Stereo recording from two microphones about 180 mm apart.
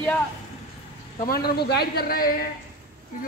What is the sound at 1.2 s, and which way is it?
A man's voice, 60° left (ahead or behind).